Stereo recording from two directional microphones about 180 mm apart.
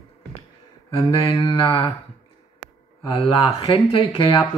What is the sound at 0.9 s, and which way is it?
Mantra, 20° left (ahead or behind).